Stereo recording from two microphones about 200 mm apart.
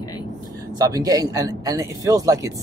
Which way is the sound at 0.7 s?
20° right (ahead or behind).